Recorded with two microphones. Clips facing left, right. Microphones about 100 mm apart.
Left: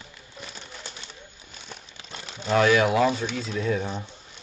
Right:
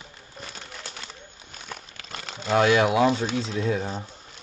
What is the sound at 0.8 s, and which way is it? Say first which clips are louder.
Crumpling: right 2 dB; 75° right (ahead or behind).